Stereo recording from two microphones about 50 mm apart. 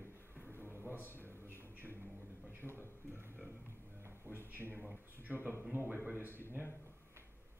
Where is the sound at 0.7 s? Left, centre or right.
Right.